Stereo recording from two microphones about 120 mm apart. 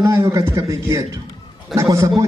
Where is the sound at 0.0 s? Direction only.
25° right (ahead or behind).